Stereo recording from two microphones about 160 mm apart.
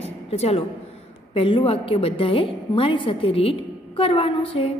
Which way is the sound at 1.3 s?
35° left (ahead or behind).